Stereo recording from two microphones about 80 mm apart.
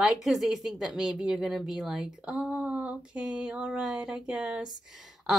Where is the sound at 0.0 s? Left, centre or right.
Centre.